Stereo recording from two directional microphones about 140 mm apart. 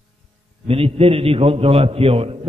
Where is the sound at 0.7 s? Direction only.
45° right (ahead or behind).